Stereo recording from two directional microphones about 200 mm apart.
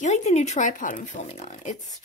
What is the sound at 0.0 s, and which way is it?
Speech, 35° left (ahead or behind).